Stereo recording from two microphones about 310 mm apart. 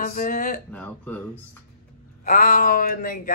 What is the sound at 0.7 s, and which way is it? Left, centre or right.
Speech, centre.